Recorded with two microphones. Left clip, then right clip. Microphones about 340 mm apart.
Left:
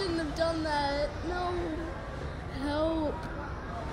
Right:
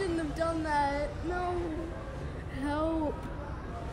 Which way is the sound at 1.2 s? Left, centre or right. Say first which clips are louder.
Even; centre.